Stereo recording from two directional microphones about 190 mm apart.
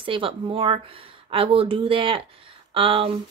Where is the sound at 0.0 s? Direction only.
25° right (ahead or behind).